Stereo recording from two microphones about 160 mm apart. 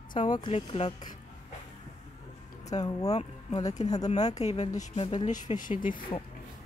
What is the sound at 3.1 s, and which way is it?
Speech, 40° left (ahead or behind).